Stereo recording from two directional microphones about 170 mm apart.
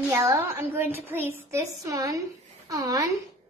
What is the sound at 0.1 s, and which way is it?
A woman's voice, 15° right (ahead or behind).